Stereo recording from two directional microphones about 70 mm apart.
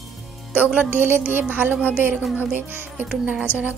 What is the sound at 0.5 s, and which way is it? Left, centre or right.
A woman's voice, right.